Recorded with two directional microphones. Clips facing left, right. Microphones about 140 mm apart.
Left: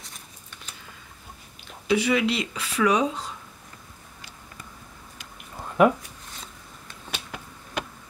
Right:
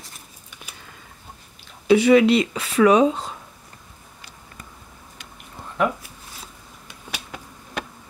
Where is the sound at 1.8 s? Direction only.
50° right (ahead or behind).